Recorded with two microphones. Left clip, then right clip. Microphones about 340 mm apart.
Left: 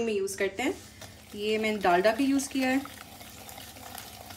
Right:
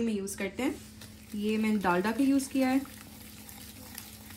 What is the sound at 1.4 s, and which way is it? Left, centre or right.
Speech, centre.